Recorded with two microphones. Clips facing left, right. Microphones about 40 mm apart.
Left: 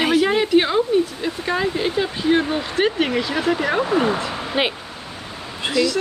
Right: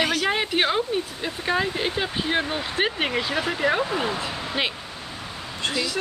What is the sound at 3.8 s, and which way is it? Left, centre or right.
Speech, centre.